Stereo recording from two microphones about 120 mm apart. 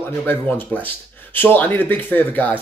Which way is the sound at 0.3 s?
15° left (ahead or behind).